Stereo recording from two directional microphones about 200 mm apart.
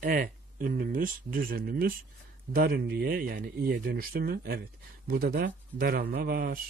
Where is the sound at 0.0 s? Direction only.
45° right (ahead or behind).